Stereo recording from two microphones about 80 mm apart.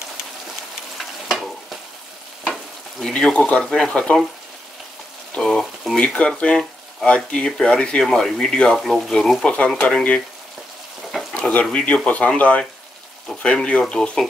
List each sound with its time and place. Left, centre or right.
0.9 s stir: centre
2.4 s frying: centre
3.7 s speech: centre
5.3 s speech: centre
5.9 s speech: centre
9.5 s speech: centre
11.3 s speech: centre